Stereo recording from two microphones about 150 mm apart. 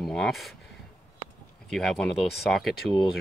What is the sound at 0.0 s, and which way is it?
Speech, centre (ahead or behind).